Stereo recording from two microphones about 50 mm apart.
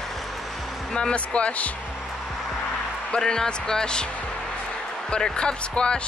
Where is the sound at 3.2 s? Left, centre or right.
Centre.